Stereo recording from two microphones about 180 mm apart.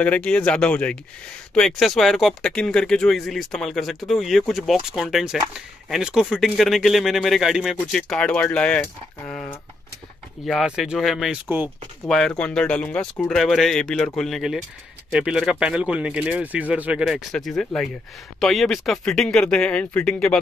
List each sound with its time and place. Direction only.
0.0 s speech: 5° left (ahead or behind)
10.4 s speech: centre (ahead or behind)
11.4 s speech: 10° right (ahead or behind)
12.1 s speech: 5° left (ahead or behind)